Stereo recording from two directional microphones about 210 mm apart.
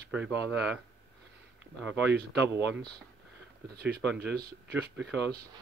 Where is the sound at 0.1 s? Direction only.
5° right (ahead or behind).